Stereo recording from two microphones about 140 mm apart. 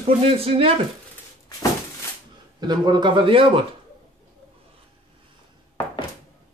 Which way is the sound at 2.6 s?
30° right (ahead or behind).